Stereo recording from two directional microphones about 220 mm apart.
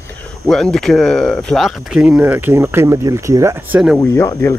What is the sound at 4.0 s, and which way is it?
Speech, 15° left (ahead or behind).